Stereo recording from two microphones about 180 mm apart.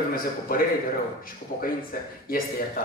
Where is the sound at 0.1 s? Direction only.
55° left (ahead or behind).